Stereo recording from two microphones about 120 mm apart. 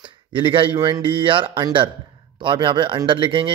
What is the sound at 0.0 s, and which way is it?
Speech, 45° right (ahead or behind).